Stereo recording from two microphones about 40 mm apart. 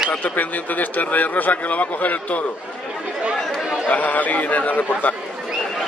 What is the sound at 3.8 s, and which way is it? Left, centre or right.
A man's voice, left.